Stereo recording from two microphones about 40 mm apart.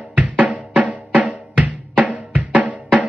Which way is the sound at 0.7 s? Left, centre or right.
Right.